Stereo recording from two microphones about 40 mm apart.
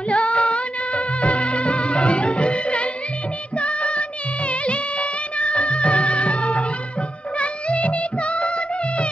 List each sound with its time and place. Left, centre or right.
0.1 s music: left
3.5 s music of bollywood: left
5.4 s music: left
7.3 s music of bollywood: left